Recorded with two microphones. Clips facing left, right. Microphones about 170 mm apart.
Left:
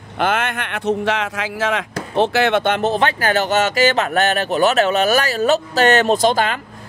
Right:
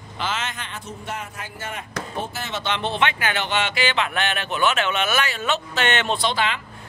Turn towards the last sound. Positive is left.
turn(degrees=45)  # may be behind; listen again after turning